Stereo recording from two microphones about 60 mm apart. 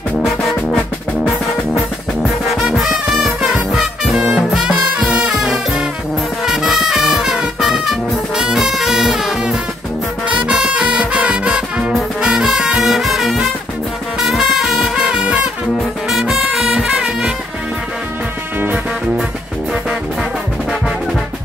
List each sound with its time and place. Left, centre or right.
0.2 s music: centre
2.2 s music: centre
4.6 s music: centre
5.3 s music: centre
15.1 s music: centre
15.8 s music: centre